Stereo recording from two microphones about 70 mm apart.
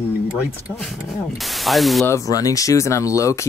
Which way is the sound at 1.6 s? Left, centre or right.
Centre.